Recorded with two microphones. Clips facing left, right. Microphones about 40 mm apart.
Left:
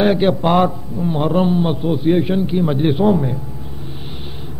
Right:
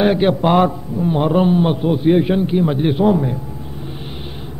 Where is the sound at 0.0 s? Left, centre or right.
Centre.